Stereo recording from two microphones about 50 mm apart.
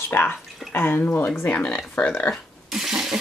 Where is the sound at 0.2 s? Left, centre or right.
Left.